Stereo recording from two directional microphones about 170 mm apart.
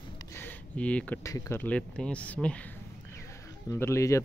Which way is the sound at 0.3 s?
10° left (ahead or behind).